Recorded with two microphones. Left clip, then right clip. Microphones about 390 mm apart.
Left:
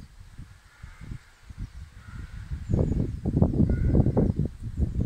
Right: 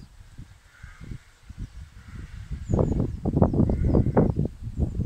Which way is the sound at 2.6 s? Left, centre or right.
Right.